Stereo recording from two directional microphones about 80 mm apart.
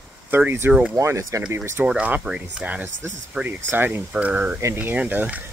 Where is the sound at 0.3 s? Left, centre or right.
Right.